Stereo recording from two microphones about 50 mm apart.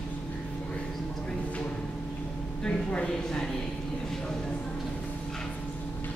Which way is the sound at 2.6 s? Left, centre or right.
Centre.